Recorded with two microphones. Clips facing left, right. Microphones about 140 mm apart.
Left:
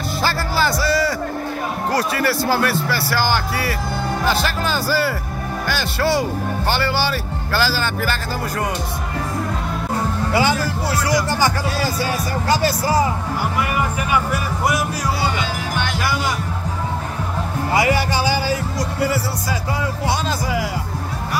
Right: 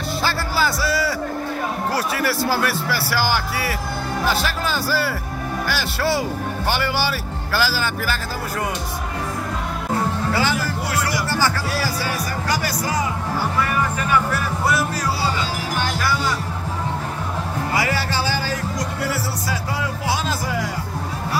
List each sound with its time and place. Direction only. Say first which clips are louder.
0.2 s music: left 2 dB; centre (ahead or behind)
1.9 s speech: left 4 dB; 5° right (ahead or behind)
11.2 s speech: left 2 dB; 20° left (ahead or behind)
13.6 s speech: even; 15° left (ahead or behind)
17.7 s speech: left 5 dB; 15° left (ahead or behind)